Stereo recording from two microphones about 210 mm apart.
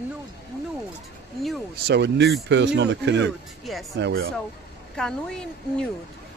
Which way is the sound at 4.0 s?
55° right (ahead or behind).